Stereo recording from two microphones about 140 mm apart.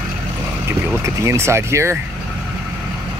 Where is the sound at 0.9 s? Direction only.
20° right (ahead or behind).